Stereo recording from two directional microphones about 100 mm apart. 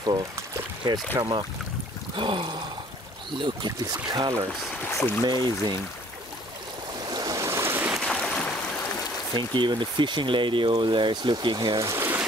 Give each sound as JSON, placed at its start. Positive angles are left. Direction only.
{"t": 1.1, "sound": "speech", "side_deg": -50}
{"t": 2.1, "sound": "a sound", "side_deg": -55}
{"t": 3.3, "sound": "speech", "side_deg": -50}
{"t": 4.8, "sound": "speech", "side_deg": 20}
{"t": 5.2, "sound": "speech", "side_deg": -45}
{"t": 7.1, "sound": "boat", "side_deg": -40}
{"t": 8.0, "sound": "boat", "side_deg": 5}
{"t": 9.3, "sound": "speech", "side_deg": -50}
{"t": 11.8, "sound": "a sound", "side_deg": -25}